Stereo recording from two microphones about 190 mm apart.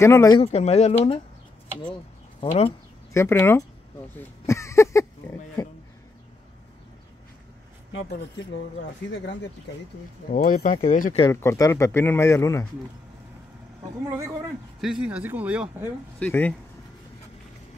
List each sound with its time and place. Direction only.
0.0 s speech: 15° left (ahead or behind)
0.4 s speech: 35° left (ahead or behind)
2.4 s speech: 30° left (ahead or behind)
3.1 s speech: 10° left (ahead or behind)
4.5 s a sound: 15° left (ahead or behind)
5.6 s speech: 20° left (ahead or behind)
10.3 s speech: 45° left (ahead or behind)
11.3 s speech: 15° left (ahead or behind)
14.0 s speech: 15° right (ahead or behind)
14.8 s speech: 5° right (ahead or behind)
16.2 s speech: 10° left (ahead or behind)